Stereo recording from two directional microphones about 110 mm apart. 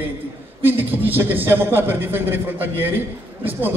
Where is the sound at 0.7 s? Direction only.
15° right (ahead or behind).